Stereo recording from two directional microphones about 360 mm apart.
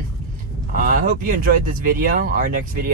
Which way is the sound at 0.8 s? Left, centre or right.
Right.